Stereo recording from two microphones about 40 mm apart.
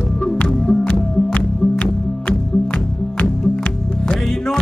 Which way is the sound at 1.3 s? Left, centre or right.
Left.